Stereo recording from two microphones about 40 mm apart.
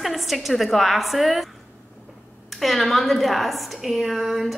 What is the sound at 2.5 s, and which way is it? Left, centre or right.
A woman's voice, centre.